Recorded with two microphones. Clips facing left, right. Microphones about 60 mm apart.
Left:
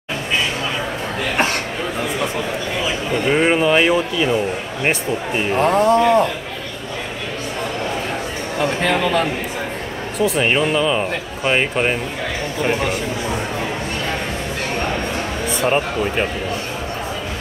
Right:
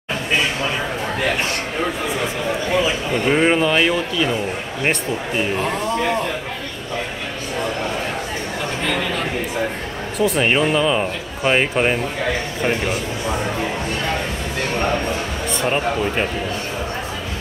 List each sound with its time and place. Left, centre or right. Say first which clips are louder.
3.3 s speech: left 1 dB; centre
5.6 s speech: left 7 dB; left
10.1 s speech: even; centre
15.6 s speech: left 1 dB; centre